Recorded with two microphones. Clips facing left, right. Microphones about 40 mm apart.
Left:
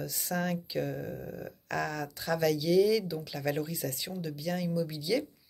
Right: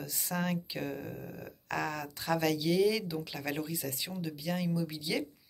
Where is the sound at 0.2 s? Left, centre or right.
Right.